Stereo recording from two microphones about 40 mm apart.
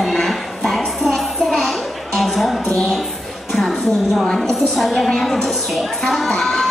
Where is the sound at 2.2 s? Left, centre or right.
Centre.